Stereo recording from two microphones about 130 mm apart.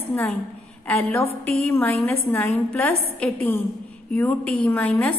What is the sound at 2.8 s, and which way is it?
A woman's voice, 15° left (ahead or behind).